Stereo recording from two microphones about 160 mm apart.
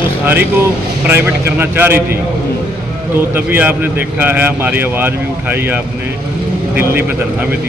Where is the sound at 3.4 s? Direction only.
10° right (ahead or behind).